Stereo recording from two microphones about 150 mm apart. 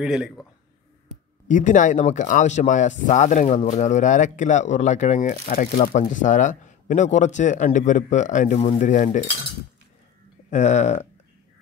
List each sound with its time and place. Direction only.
0.0 s a man's voice: 5° right (ahead or behind)
1.5 s speech: 55° left (ahead or behind)
10.5 s speech: 50° left (ahead or behind)